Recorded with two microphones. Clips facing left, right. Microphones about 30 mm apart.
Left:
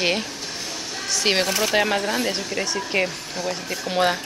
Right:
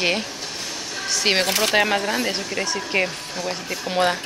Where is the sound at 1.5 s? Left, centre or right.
Right.